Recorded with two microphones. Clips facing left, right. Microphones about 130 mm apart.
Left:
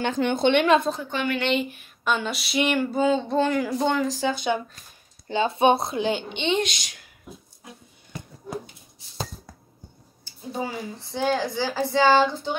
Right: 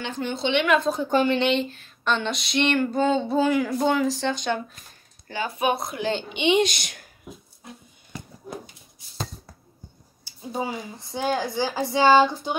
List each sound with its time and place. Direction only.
0.0 s a woman's voice: 55° left (ahead or behind)
1.2 s speech: 30° right (ahead or behind)
1.5 s a sound: 10° left (ahead or behind)
5.3 s speech: 25° left (ahead or behind)
6.2 s a woman's voice: 10° right (ahead or behind)
6.7 s a woman's voice: 50° right (ahead or behind)
10.5 s a woman's voice: 15° right (ahead or behind)